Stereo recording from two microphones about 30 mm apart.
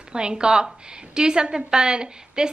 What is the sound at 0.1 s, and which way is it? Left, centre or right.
A woman's voice, right.